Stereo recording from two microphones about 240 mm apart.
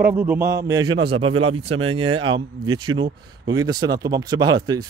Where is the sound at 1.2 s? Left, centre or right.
Right.